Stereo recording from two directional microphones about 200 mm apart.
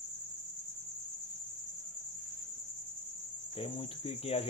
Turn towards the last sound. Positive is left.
turn(degrees=30)  # may be behind; listen again after turning